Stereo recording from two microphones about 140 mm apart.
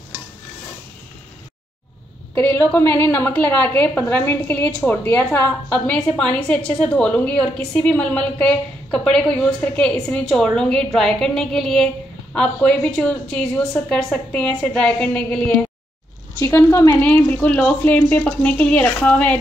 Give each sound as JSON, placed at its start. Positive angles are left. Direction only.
{"t": 2.3, "sound": "a woman's voice", "side_deg": 15}
{"t": 16.3, "sound": "a woman's voice", "side_deg": 20}
{"t": 17.0, "sound": "a woman's voice", "side_deg": 10}